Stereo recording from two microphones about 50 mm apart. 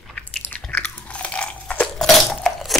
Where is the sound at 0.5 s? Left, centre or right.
Left.